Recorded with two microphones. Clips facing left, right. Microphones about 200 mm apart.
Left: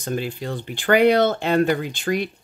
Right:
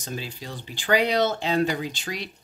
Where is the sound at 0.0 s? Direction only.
55° left (ahead or behind).